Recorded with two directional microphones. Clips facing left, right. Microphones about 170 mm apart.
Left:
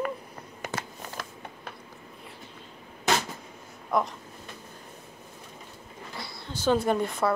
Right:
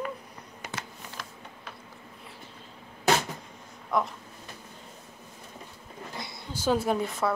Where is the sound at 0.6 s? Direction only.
50° left (ahead or behind).